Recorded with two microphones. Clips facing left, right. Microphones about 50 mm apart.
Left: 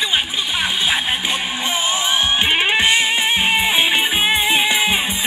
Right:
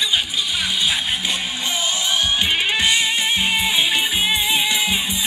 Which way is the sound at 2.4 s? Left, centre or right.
Left.